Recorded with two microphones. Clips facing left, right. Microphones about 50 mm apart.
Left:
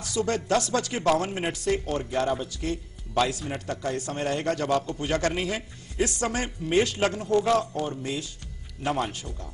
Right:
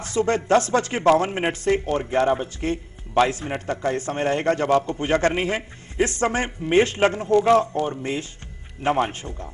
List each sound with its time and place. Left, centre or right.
0.0 s speech: right